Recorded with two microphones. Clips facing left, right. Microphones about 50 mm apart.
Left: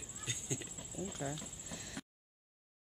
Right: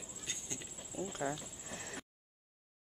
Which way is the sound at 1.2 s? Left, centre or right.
Centre.